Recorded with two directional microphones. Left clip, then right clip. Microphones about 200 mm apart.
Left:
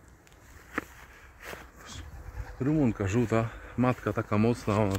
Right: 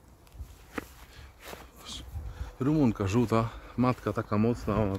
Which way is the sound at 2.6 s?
20° right (ahead or behind).